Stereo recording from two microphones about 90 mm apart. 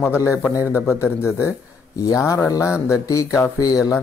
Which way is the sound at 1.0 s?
30° left (ahead or behind).